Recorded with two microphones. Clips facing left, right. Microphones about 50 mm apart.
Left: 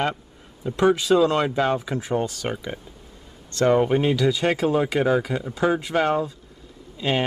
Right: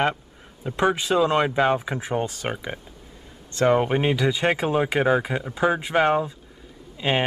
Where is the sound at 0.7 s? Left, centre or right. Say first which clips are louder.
Left 3 dB; right.